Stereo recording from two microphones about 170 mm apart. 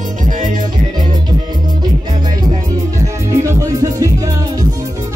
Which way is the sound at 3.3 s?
15° right (ahead or behind).